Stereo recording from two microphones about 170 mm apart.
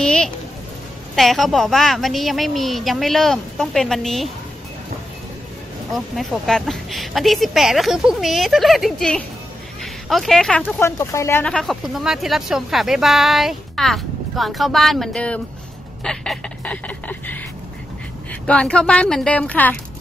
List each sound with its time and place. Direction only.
0.0 s speech: 5° left (ahead or behind)
5.9 s speech: centre (ahead or behind)
11.4 s speech: 5° left (ahead or behind)
16.0 s a sound: 5° left (ahead or behind)
18.5 s speech: 5° left (ahead or behind)